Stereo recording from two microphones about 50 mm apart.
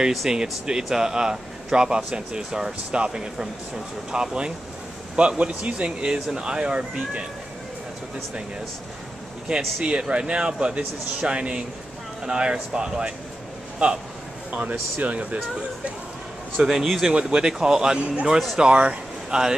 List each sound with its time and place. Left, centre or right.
0.1 s speech: centre
9.8 s speech: centre
16.6 s speech: centre
17.1 s speech: right